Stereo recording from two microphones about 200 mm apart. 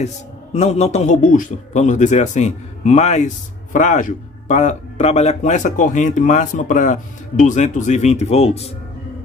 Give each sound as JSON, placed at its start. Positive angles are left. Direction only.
{"t": 0.0, "sound": "speech", "side_deg": 35}